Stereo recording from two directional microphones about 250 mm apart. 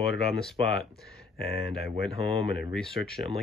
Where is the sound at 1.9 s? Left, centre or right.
Right.